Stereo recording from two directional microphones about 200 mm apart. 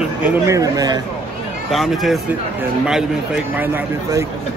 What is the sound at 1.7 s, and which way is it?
Speech, centre (ahead or behind).